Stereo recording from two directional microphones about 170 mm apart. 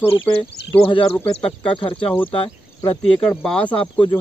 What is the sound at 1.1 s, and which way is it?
Speech, 10° left (ahead or behind).